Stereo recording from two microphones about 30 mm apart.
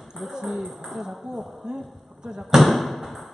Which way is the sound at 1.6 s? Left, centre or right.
Right.